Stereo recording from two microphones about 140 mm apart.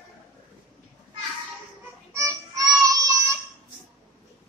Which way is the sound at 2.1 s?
20° right (ahead or behind).